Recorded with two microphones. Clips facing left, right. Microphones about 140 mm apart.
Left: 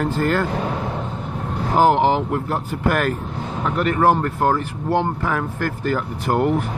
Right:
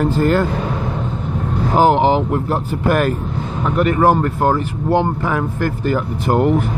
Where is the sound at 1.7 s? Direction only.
20° right (ahead or behind).